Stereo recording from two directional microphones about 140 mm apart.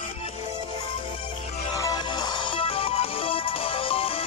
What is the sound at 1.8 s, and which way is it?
Music, 30° left (ahead or behind).